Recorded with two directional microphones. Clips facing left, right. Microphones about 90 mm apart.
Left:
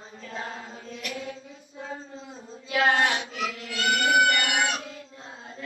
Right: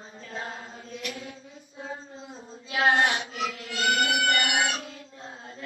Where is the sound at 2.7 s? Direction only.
30° right (ahead or behind).